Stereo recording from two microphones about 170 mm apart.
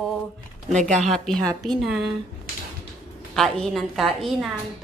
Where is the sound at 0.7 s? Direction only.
45° right (ahead or behind).